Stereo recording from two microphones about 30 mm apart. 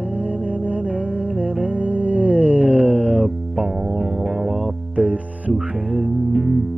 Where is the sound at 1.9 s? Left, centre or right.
Right.